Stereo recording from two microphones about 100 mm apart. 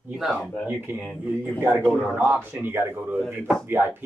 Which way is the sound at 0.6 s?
20° right (ahead or behind).